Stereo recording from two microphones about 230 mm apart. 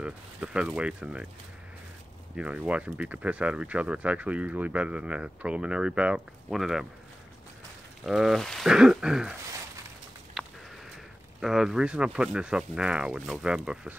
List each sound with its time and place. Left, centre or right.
0.0 s speech: centre
2.3 s speech: centre
8.0 s speech: centre
10.4 s a sound: centre
11.4 s speech: centre